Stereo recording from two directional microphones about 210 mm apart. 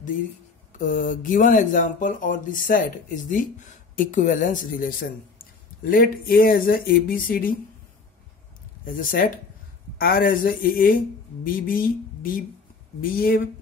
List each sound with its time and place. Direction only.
0.7 s speech: 40° left (ahead or behind)
8.8 s speech: 40° left (ahead or behind)